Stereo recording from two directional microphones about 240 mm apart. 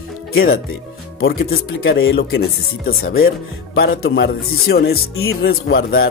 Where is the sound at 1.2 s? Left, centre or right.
Left.